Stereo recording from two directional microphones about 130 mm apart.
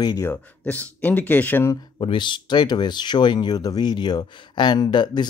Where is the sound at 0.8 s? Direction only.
15° left (ahead or behind).